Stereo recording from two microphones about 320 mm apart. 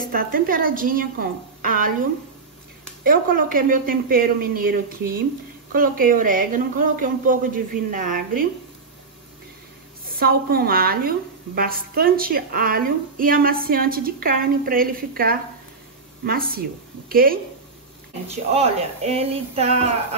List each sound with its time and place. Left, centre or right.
0.0 s a woman's voice: right
3.0 s a woman's voice: right
10.0 s a woman's voice: right